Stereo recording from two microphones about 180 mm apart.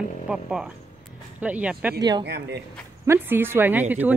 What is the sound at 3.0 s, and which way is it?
Speech, 10° right (ahead or behind).